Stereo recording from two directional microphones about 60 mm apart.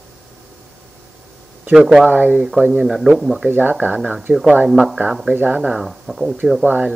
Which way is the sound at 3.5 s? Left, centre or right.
Right.